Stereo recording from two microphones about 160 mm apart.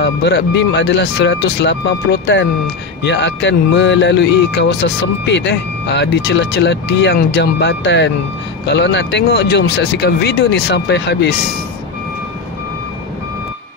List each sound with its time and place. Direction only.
0.0 s speech: 90° left